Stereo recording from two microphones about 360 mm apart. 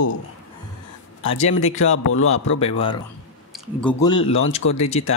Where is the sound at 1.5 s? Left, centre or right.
Left.